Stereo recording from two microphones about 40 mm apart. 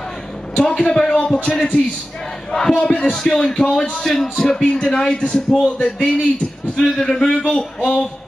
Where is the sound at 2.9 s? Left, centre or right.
Centre.